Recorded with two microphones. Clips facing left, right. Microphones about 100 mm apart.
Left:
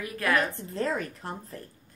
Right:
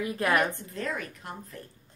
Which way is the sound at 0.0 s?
25° right (ahead or behind).